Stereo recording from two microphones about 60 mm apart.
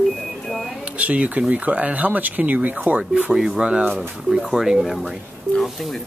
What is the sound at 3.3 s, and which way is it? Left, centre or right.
Speech, centre.